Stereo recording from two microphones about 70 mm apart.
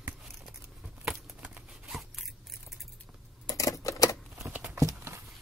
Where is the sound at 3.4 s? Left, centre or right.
Left.